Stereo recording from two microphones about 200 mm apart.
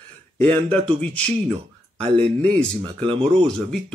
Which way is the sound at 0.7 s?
5° left (ahead or behind).